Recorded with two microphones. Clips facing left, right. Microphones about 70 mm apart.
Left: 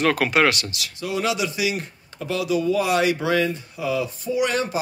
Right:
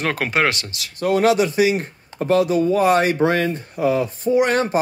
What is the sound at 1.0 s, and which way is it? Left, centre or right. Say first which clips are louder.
Speech: right 8 dB; right.